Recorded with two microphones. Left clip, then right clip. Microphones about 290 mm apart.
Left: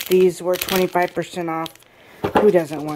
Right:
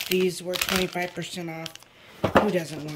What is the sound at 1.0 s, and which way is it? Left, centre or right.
Speech, left.